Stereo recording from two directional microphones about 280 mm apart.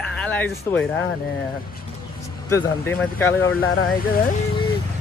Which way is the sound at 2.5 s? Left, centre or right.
Centre.